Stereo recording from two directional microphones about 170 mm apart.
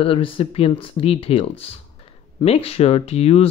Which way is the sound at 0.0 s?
30° left (ahead or behind).